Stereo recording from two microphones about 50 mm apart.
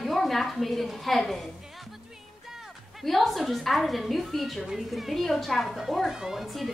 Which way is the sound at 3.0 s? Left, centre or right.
Centre.